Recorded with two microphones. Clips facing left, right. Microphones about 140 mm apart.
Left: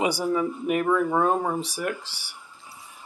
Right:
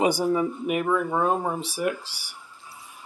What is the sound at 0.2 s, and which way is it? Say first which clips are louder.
Speech: right 1 dB; 25° right (ahead or behind).